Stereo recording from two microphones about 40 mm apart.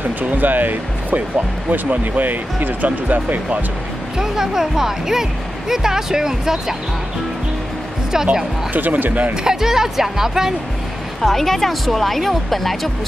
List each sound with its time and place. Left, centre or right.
0.2 s speech: right
4.2 s speech: centre
8.7 s speech: right
9.3 s speech: centre
11.1 s speech: centre